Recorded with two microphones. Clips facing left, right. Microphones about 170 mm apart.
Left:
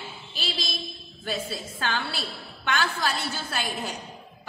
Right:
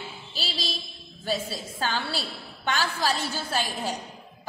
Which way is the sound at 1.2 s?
35° right (ahead or behind).